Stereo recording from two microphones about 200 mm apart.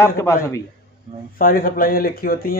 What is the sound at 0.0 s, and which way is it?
Speech, 15° left (ahead or behind).